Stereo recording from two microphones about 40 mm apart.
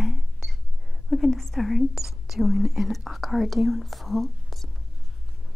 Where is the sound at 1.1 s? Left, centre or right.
Centre.